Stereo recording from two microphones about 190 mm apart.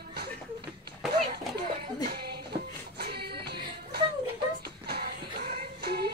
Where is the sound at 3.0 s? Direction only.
55° right (ahead or behind).